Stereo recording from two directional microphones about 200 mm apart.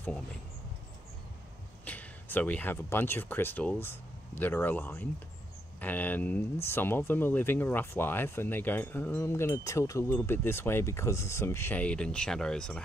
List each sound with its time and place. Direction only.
1.9 s speech: 10° left (ahead or behind)